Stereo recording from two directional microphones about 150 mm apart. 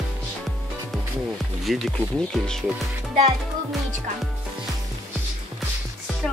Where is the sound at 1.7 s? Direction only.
5° left (ahead or behind).